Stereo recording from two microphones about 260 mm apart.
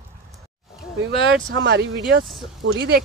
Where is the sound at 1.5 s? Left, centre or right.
Right.